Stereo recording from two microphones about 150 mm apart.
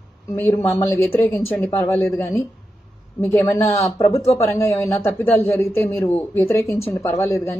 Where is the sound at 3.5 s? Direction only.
20° left (ahead or behind).